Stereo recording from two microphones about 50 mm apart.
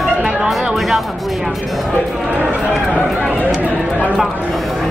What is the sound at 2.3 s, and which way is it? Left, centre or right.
Speech, right.